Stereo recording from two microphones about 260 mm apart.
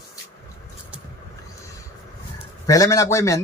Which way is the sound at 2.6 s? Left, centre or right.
Centre.